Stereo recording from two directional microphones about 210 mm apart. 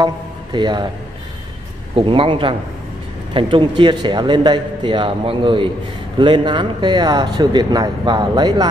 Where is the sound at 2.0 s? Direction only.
25° right (ahead or behind).